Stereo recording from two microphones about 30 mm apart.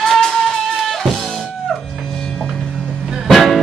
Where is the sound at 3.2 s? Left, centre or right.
Centre.